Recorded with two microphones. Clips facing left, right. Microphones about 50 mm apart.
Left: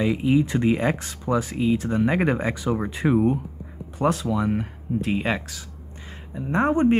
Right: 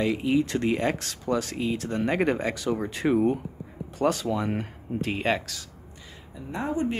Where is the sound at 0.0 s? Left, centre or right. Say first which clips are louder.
Left 3 dB; centre.